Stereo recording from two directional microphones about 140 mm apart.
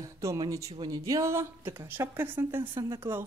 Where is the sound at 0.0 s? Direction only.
20° right (ahead or behind).